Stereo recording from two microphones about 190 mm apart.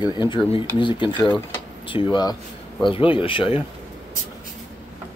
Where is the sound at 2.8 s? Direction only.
25° left (ahead or behind).